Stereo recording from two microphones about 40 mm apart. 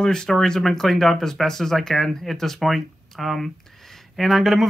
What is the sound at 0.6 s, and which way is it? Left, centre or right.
Speech, centre.